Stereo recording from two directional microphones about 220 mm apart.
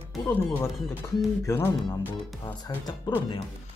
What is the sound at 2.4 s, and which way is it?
Speech, 20° left (ahead or behind).